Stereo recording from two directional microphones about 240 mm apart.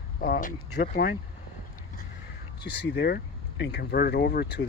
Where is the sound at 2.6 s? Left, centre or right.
Left.